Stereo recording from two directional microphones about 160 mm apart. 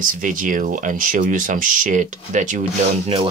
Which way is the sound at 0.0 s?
60° right (ahead or behind).